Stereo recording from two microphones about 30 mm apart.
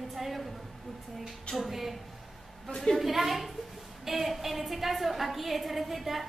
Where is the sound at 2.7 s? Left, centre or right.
Left.